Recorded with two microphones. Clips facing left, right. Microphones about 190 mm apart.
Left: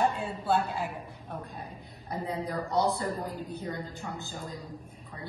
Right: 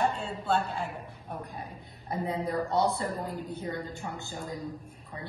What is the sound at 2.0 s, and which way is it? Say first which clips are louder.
Speech: right 2 dB; 25° right (ahead or behind).